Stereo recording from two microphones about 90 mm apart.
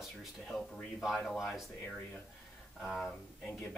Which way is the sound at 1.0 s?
Centre (ahead or behind).